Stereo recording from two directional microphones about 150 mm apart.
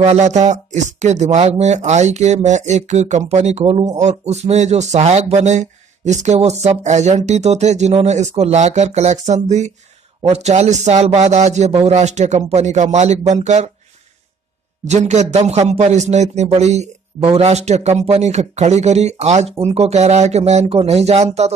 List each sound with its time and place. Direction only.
0.0 s speech: 45° right (ahead or behind)
14.9 s speech: 50° right (ahead or behind)